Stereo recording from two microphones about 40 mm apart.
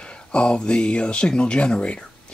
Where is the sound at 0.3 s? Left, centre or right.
Left.